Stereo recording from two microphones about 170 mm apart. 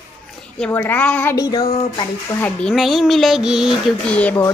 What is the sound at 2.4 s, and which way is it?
Speech, 5° left (ahead or behind).